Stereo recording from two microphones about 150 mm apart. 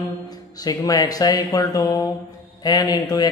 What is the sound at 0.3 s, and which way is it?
Speech, 25° left (ahead or behind).